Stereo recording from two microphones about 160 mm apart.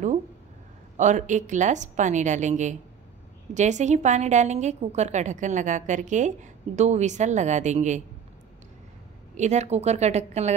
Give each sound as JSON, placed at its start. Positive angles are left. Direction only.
{"t": 0.9, "sound": "a woman's voice", "side_deg": -50}
{"t": 9.4, "sound": "a woman's voice", "side_deg": -45}